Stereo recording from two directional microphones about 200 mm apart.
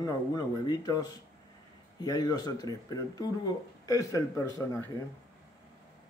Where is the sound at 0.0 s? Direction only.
20° left (ahead or behind).